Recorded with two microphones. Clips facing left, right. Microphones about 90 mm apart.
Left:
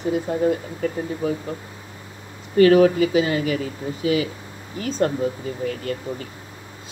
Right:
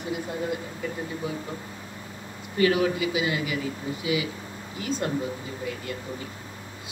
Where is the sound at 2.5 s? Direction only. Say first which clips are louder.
Left 9 dB; 45° left (ahead or behind).